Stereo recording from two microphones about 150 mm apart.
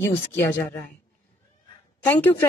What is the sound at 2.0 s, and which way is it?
Speech, 15° left (ahead or behind).